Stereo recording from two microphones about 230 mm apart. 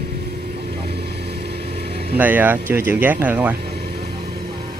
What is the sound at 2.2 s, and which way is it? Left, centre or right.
Speech, centre.